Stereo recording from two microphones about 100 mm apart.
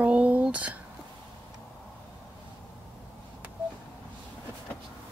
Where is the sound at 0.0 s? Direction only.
15° right (ahead or behind).